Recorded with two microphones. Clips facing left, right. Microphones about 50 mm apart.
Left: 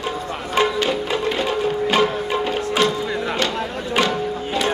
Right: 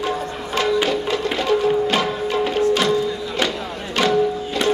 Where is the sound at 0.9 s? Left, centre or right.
Centre.